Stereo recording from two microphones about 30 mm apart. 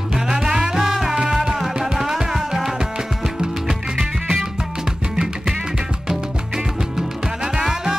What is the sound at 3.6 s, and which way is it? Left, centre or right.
Music, right.